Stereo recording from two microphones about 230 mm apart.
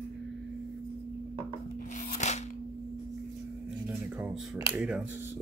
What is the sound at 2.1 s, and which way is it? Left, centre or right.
Scissors, left.